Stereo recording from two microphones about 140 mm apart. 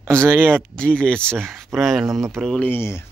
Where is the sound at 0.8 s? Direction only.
5° left (ahead or behind).